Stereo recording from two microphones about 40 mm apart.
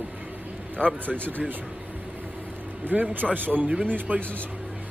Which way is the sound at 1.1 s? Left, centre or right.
Right.